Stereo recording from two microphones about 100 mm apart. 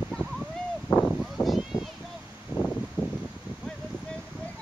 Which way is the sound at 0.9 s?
55° left (ahead or behind).